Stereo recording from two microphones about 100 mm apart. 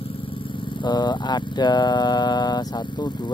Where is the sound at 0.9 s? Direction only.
45° left (ahead or behind).